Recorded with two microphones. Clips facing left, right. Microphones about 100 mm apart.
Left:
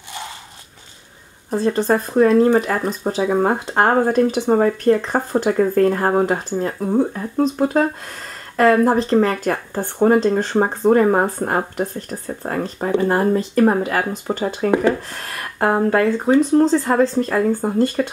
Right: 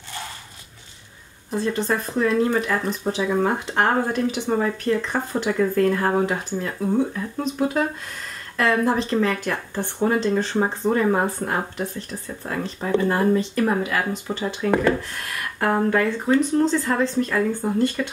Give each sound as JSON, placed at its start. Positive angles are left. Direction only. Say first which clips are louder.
{"t": 1.5, "sound": "speech", "louder": "left 6 dB", "side_deg": 40}